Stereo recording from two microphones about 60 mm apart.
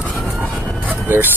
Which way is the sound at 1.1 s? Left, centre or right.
Right.